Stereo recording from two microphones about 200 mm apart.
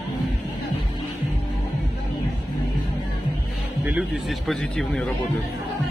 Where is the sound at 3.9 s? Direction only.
5° right (ahead or behind).